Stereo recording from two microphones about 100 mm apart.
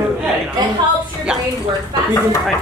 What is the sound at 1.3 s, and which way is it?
Speech, 10° right (ahead or behind).